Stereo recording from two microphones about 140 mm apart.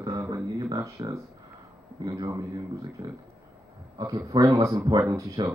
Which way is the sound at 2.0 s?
25° right (ahead or behind).